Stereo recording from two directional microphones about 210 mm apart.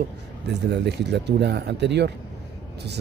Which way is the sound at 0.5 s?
55° right (ahead or behind).